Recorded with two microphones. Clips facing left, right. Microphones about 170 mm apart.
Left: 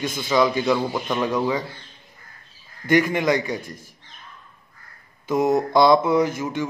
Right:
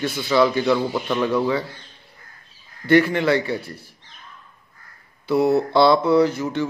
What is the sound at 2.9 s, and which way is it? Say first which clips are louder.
Speech: right 2 dB; 15° left (ahead or behind).